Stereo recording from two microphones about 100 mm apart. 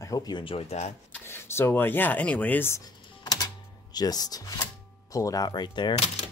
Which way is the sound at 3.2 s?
40° left (ahead or behind).